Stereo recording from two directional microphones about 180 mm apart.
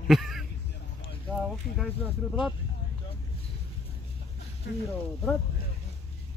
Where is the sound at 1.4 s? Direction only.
Centre (ahead or behind).